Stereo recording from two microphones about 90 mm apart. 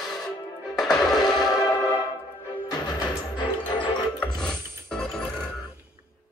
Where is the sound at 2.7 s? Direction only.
55° left (ahead or behind).